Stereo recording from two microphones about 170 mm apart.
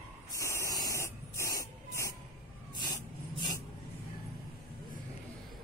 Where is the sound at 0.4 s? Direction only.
15° left (ahead or behind).